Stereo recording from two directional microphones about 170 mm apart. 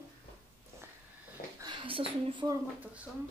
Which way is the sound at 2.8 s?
5° right (ahead or behind).